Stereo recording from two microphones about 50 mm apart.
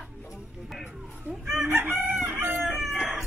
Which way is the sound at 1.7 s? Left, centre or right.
Right.